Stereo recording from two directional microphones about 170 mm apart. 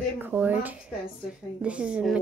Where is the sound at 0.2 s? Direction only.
10° right (ahead or behind).